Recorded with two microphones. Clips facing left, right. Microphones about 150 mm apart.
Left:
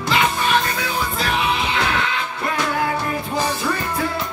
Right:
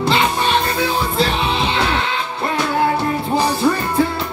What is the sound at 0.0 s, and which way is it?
Music, 30° right (ahead or behind).